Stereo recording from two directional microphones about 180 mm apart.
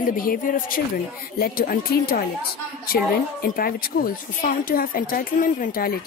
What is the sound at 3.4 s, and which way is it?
Speech, 55° left (ahead or behind).